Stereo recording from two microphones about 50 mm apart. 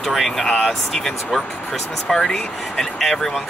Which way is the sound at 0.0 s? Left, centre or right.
Centre.